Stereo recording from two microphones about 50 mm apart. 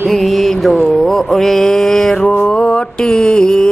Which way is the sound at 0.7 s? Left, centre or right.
Left.